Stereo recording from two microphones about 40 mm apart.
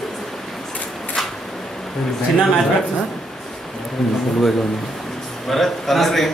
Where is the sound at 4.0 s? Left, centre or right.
Centre.